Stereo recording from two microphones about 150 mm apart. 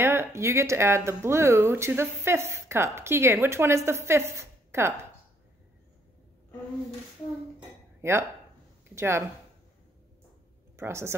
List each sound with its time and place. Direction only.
0.0 s speech: 15° right (ahead or behind)
8.0 s speech: 15° right (ahead or behind)
10.8 s speech: 15° right (ahead or behind)